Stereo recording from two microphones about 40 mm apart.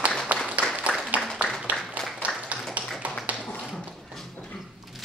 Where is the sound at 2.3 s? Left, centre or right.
Left.